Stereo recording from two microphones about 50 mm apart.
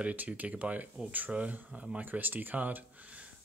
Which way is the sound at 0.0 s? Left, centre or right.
Right.